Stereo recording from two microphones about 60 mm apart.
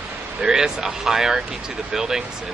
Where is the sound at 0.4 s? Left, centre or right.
Centre.